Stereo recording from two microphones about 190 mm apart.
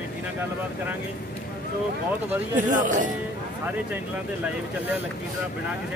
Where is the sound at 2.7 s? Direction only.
45° right (ahead or behind).